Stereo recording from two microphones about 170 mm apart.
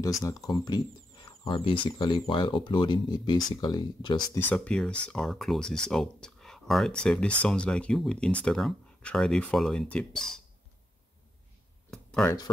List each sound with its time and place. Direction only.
0.0 s speech: 20° left (ahead or behind)
4.4 s speech: 10° left (ahead or behind)
11.9 s a sound: 5° left (ahead or behind)